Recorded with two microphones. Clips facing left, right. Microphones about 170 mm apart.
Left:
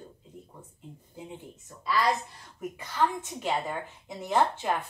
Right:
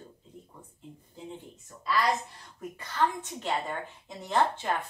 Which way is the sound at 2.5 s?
10° left (ahead or behind).